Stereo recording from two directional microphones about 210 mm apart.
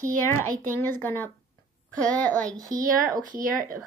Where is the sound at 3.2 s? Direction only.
40° right (ahead or behind).